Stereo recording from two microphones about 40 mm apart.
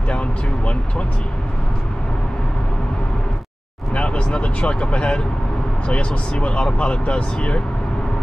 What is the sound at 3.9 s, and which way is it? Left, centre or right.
Speech, left.